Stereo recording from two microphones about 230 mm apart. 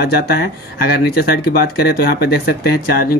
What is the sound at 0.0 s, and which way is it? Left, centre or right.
Speech, left.